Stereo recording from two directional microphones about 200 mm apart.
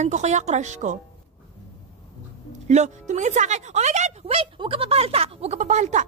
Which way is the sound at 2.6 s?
35° right (ahead or behind).